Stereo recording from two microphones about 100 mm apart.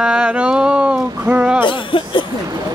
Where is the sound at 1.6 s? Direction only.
55° left (ahead or behind).